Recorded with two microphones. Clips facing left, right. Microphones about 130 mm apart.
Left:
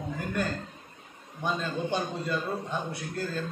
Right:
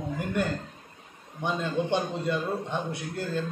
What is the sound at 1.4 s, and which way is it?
A man's voice, 20° right (ahead or behind).